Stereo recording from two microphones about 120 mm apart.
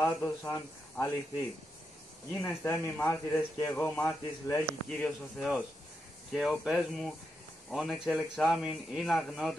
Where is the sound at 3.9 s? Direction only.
5° left (ahead or behind).